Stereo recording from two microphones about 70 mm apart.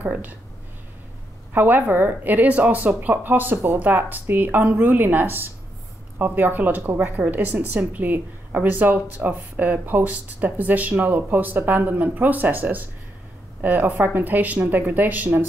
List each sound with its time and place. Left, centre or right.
0.0 s speech: right
1.5 s speech: right